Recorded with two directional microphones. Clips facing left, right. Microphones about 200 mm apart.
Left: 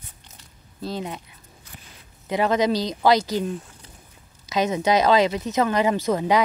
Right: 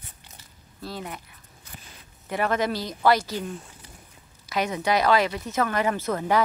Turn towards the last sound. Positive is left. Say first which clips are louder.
# left 3 dB
turn(degrees=15)  # may be behind; listen again after turning